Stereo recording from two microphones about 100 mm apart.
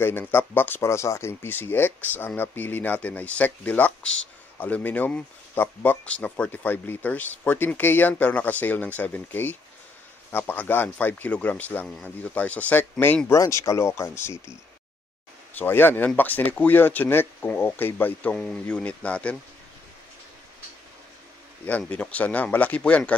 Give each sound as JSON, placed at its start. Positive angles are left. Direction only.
{"t": 0.0, "sound": "speech", "side_deg": 20}
{"t": 13.3, "sound": "speech", "side_deg": 30}
{"t": 15.5, "sound": "speech", "side_deg": 20}
{"t": 18.3, "sound": "speech", "side_deg": 10}
{"t": 21.6, "sound": "speech", "side_deg": 15}